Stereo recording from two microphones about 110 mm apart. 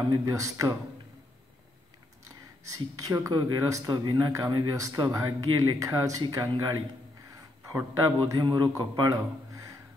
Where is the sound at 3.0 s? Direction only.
30° right (ahead or behind).